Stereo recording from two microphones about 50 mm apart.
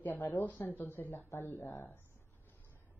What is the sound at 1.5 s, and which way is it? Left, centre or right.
Speech, left.